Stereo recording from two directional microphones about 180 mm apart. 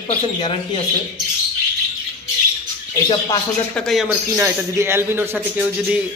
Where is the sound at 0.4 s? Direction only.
30° left (ahead or behind).